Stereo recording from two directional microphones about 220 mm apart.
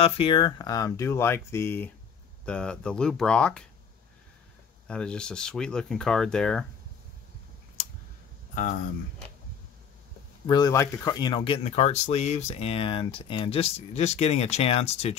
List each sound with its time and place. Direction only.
0.0 s speech: 25° left (ahead or behind); by 3.6 s 5° left (ahead or behind)
4.8 s speech: 5° left (ahead or behind)
8.5 s speech: 35° left (ahead or behind)
10.4 s speech: 20° left (ahead or behind)